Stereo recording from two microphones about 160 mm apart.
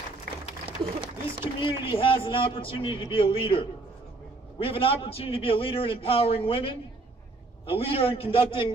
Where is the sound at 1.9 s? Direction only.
30° left (ahead or behind).